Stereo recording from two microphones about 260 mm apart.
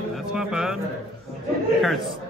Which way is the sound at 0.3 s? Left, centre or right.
Centre.